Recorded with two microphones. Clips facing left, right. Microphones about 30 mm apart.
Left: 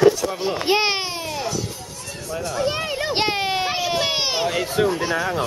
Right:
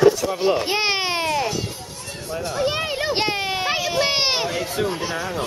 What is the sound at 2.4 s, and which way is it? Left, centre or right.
Speech, right.